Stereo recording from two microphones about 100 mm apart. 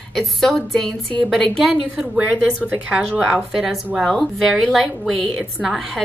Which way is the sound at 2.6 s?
15° right (ahead or behind).